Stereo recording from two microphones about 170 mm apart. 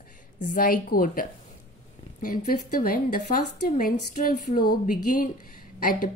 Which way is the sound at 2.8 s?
55° left (ahead or behind).